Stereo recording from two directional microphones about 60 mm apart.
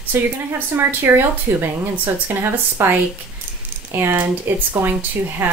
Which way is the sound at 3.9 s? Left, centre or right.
Right.